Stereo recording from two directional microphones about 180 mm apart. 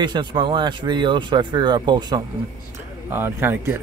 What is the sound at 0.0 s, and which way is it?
Speech, 25° right (ahead or behind).